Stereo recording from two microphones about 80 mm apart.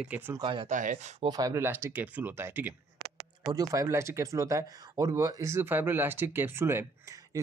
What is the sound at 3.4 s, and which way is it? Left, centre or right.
Speech, right.